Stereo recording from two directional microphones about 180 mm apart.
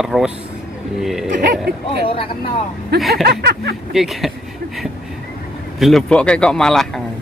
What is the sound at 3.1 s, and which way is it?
Speech, 60° right (ahead or behind).